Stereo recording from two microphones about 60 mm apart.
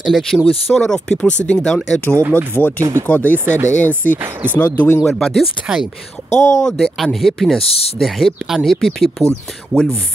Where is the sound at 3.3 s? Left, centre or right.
Right.